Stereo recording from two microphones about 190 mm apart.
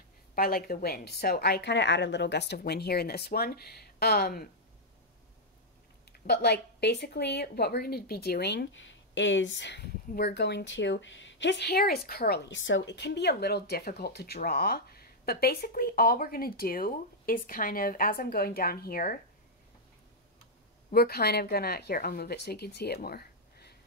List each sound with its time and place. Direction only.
0.4 s speech: 50° left (ahead or behind)
6.1 s speech: 60° left (ahead or behind)
20.9 s speech: 55° left (ahead or behind)
23.0 s a sound: 55° left (ahead or behind)